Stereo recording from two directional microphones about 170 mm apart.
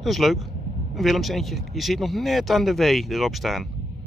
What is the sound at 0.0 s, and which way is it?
Speech, centre (ahead or behind).